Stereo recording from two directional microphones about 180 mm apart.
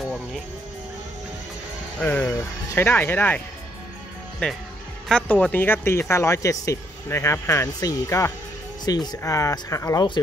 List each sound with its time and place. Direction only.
2.0 s speech: 5° left (ahead or behind); by 10.2 s 25° left (ahead or behind)